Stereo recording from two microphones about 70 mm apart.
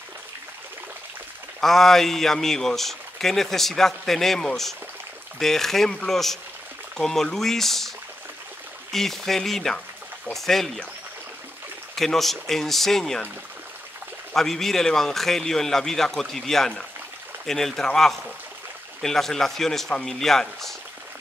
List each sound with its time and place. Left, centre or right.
1.6 s speech: centre
8.9 s speech: centre
11.9 s speech: centre
14.3 s a man's voice: centre